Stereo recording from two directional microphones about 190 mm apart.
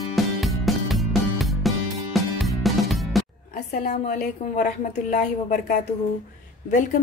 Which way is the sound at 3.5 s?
40° left (ahead or behind).